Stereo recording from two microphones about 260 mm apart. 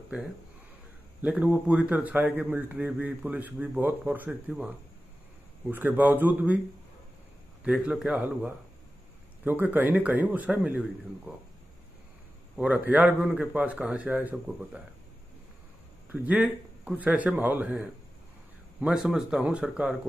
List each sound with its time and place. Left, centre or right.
0.1 s a man's voice: centre
7.6 s a man's voice: centre
12.5 s a man's voice: centre
16.1 s a man's voice: centre